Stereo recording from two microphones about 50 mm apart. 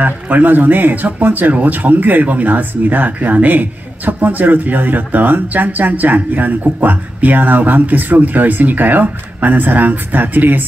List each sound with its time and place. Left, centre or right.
0.0 s speech: right